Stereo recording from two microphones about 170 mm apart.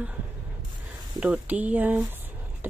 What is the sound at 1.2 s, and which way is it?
Speech, 10° right (ahead or behind).